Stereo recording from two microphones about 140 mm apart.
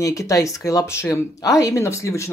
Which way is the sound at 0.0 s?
20° left (ahead or behind).